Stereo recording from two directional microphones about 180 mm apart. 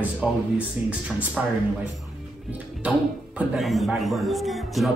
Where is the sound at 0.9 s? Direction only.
10° right (ahead or behind).